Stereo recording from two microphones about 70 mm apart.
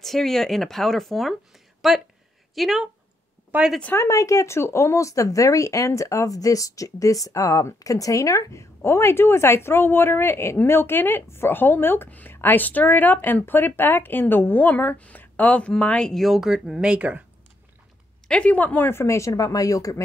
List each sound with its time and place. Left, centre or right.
0.0 s speech: centre
3.5 s speech: right
3.9 s speech: left; by 16.1 s centre
16.1 s speech: centre
18.3 s speech: centre; by 20.0 s left